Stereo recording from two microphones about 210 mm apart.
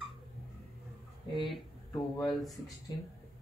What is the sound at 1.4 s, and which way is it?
Speech, 20° left (ahead or behind).